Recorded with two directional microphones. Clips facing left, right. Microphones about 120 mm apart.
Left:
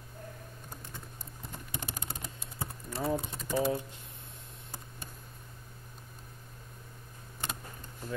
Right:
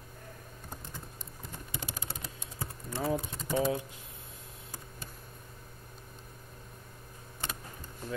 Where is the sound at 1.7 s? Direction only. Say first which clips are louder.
Left 1 dB; 50° left (ahead or behind).